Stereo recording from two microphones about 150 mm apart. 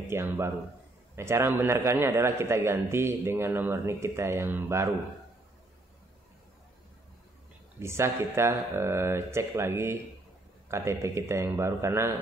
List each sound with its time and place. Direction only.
0.1 s a man's voice: 15° right (ahead or behind)
7.8 s a man's voice: 15° right (ahead or behind)